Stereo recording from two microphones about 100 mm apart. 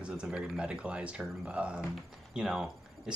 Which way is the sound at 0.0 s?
5° right (ahead or behind).